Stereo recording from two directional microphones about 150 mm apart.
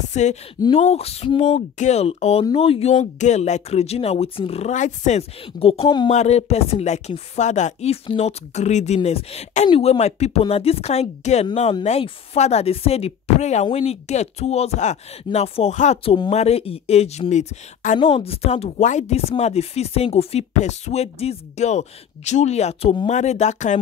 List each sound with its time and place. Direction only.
0.1 s speech: 50° left (ahead or behind)
5.4 s speech: 40° left (ahead or behind)
6.0 s speech: 45° left (ahead or behind)
18.1 s speech: 40° left (ahead or behind)